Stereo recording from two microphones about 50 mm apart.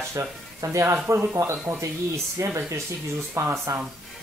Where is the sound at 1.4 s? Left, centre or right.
Right.